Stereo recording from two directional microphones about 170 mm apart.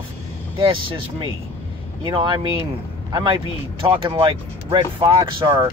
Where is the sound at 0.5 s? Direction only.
30° right (ahead or behind).